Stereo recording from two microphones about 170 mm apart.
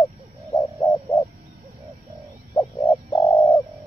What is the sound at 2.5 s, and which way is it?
Bird, 20° left (ahead or behind).